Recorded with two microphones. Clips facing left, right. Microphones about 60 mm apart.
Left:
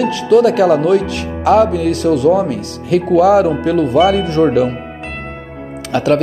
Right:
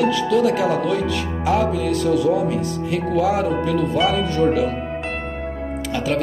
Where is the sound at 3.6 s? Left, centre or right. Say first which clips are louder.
Left 7 dB; left.